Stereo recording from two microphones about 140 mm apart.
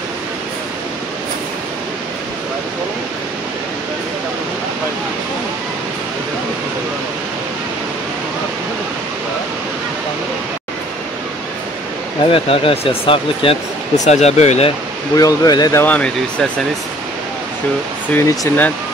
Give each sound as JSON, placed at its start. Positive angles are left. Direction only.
{"t": 12.3, "sound": "speech", "side_deg": 40}
{"t": 13.9, "sound": "speech", "side_deg": 55}
{"t": 15.1, "sound": "speech", "side_deg": 25}
{"t": 15.8, "sound": "speech", "side_deg": 10}
{"t": 18.1, "sound": "speech", "side_deg": 25}